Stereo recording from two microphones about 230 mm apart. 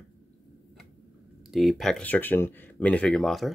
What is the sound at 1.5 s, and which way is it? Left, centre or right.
Speech, centre.